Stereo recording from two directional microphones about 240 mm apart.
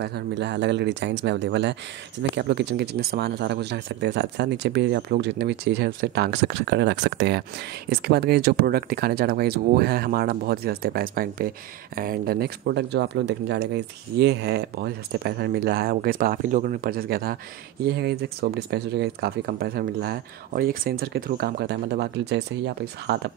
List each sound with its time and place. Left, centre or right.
0.0 s speech: right